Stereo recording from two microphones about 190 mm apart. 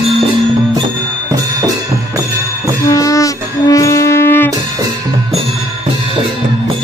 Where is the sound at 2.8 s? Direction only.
15° left (ahead or behind).